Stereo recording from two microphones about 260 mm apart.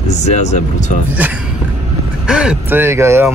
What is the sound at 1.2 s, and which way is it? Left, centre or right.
Speech, centre.